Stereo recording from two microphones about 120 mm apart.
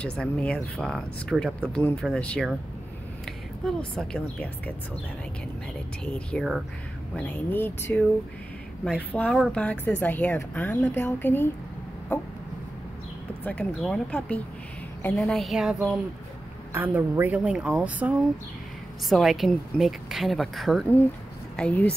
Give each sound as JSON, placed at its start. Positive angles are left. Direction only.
{"t": 0.0, "sound": "speech", "side_deg": 10}
{"t": 3.6, "sound": "speech", "side_deg": 5}
{"t": 6.0, "sound": "speech", "side_deg": 10}
{"t": 13.4, "sound": "speech", "side_deg": 10}
{"t": 16.7, "sound": "speech", "side_deg": -15}
{"t": 19.0, "sound": "speech", "side_deg": 0}